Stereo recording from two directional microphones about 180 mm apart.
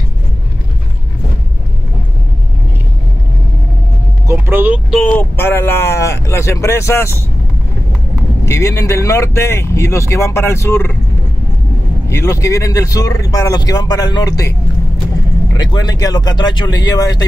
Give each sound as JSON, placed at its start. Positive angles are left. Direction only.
{"t": 4.3, "sound": "vehicle", "side_deg": -10}
{"t": 5.0, "sound": "speech", "side_deg": 10}
{"t": 8.5, "sound": "speech", "side_deg": 15}
{"t": 12.1, "sound": "speech", "side_deg": 15}
{"t": 15.5, "sound": "speech", "side_deg": 20}